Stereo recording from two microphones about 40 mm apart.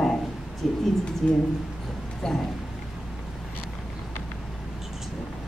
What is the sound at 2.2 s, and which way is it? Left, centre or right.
Speech, centre.